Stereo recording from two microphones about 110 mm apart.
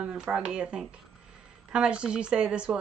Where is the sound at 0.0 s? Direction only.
10° right (ahead or behind).